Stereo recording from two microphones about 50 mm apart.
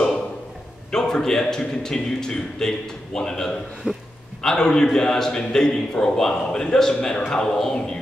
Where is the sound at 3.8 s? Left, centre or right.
Centre.